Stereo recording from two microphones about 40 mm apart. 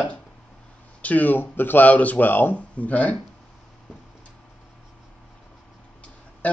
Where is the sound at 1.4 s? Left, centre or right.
Left.